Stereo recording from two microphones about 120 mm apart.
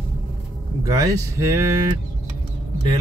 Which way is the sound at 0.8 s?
30° right (ahead or behind).